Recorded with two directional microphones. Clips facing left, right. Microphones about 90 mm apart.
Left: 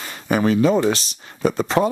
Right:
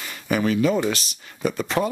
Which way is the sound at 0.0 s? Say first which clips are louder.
Left 3 dB; 35° left (ahead or behind).